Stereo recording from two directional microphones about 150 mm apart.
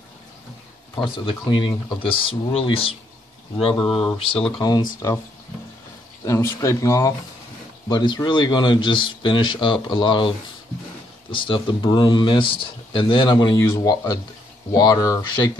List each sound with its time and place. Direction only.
0.9 s speech: 35° left (ahead or behind)
4.2 s speech: 40° left (ahead or behind)
4.6 s speech: 30° left (ahead or behind)
6.2 s speech: 20° left (ahead or behind)
11.3 s speech: 35° left (ahead or behind)